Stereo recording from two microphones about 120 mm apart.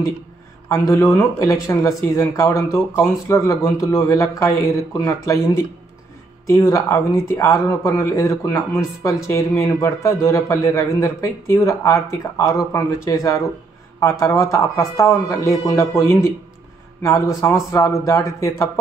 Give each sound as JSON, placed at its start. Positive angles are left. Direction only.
{"t": 0.7, "sound": "speech", "side_deg": 25}